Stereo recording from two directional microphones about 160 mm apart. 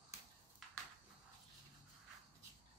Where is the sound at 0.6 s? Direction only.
Centre (ahead or behind).